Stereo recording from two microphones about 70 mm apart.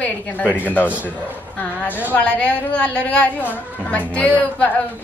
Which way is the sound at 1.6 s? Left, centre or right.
Left.